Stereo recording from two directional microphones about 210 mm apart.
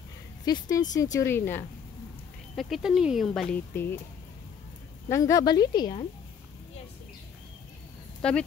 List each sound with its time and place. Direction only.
0.5 s speech: 15° left (ahead or behind)
2.5 s speech: centre (ahead or behind)
3.7 s speech: 10° left (ahead or behind)
5.1 s a woman's voice: 15° left (ahead or behind)
8.2 s speech: 5° left (ahead or behind)